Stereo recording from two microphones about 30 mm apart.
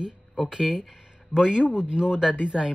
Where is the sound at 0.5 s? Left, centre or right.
Centre.